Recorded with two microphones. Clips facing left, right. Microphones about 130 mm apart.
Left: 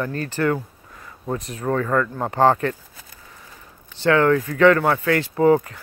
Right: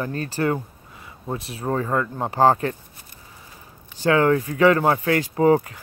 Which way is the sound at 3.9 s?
15° right (ahead or behind).